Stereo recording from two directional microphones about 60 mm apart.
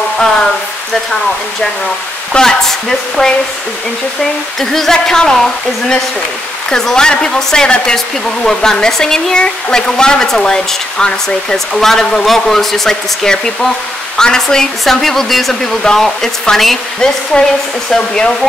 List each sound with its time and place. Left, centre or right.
2.3 s speech: centre